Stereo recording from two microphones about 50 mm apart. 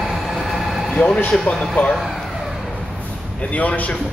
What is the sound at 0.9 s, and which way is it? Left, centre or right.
Speech, left.